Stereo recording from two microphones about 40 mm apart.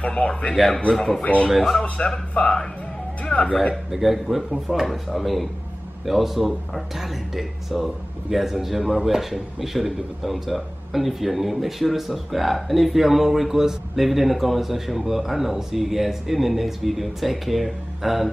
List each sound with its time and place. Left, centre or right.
0.0 s speech: left
0.7 s a man's voice: left
1.5 s speech: centre
1.8 s a man's voice: centre
3.3 s speech: left
3.9 s speech: centre